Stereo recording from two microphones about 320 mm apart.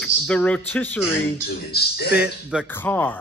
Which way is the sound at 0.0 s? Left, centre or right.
Centre.